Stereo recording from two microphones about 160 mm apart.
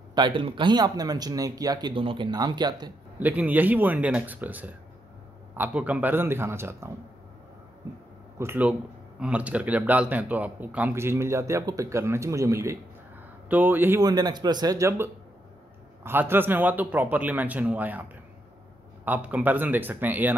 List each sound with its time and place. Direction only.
0.1 s speech: 30° right (ahead or behind)
3.2 s speech: 10° right (ahead or behind)
8.4 s speech: 10° right (ahead or behind)
14.0 s speech: 25° right (ahead or behind)